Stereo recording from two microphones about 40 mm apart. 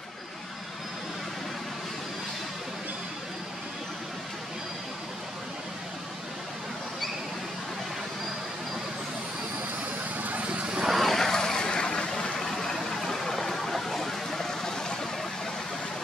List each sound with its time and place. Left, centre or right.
10.1 s vehicle: right
10.8 s vehicle: centre